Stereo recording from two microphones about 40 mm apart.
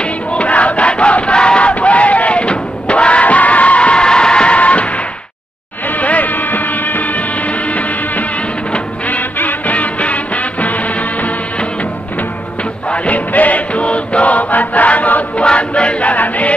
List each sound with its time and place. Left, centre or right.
0.0 s battle cry: left
4.0 s music: left
12.9 s music: left
15.4 s music: left